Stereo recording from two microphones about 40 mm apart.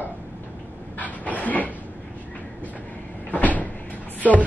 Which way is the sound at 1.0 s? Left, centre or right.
Left.